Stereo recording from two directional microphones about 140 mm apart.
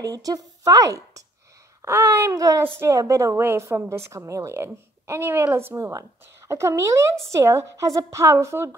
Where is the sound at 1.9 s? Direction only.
15° right (ahead or behind).